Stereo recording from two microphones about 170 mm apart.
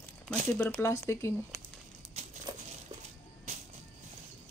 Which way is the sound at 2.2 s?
40° right (ahead or behind).